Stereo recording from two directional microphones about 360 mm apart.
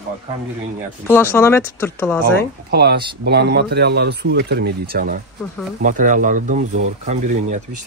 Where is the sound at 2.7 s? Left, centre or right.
Right.